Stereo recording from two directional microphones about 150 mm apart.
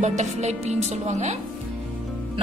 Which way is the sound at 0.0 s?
55° right (ahead or behind).